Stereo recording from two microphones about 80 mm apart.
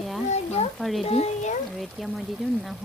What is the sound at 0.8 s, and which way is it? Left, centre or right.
Speech, centre.